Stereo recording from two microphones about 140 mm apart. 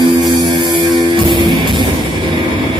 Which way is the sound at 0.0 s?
30° right (ahead or behind).